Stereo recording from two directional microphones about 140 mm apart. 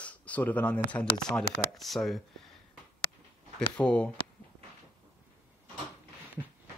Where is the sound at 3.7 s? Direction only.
5° left (ahead or behind).